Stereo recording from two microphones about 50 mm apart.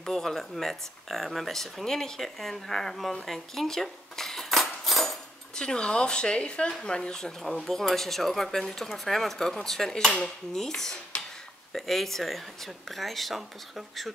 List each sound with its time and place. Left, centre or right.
0.0 s speech: centre
5.6 s speech: centre
6.8 s dishes: centre
7.4 s speech: centre
9.6 s dishes: centre
11.7 s speech: centre